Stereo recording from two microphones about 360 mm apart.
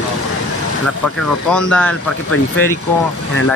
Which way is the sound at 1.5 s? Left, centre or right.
Centre.